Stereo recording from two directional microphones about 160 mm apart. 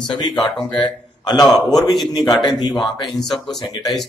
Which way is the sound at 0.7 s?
30° left (ahead or behind).